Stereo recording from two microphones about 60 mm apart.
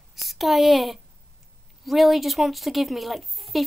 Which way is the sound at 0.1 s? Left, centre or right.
Centre.